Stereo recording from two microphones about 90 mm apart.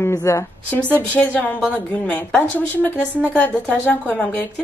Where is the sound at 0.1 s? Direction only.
35° left (ahead or behind).